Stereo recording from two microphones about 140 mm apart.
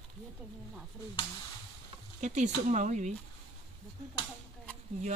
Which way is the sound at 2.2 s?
60° right (ahead or behind).